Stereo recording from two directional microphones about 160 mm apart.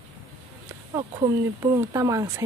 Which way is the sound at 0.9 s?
20° right (ahead or behind).